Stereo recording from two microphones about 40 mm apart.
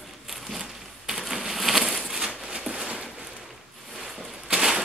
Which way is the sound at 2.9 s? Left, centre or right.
Centre.